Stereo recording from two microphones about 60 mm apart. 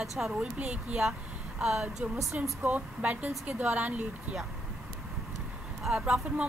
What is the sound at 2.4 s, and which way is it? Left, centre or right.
Speech, right.